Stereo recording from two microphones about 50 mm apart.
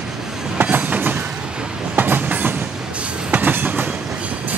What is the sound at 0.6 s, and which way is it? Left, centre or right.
Train, right.